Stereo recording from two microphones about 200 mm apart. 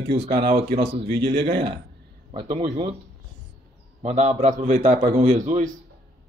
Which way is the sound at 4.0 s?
35° right (ahead or behind).